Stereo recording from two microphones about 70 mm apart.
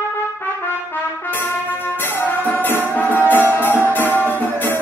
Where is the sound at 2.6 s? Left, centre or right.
Left.